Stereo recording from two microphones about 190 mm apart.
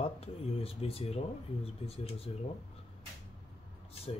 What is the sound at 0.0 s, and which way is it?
Speech, 30° left (ahead or behind).